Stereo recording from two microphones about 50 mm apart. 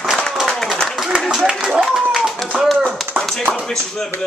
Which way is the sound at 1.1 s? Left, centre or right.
Centre.